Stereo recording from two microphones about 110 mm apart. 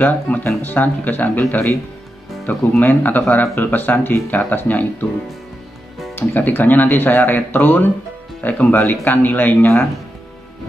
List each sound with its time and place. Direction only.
0.0 s speech: 15° left (ahead or behind)
6.1 s speech: 20° left (ahead or behind)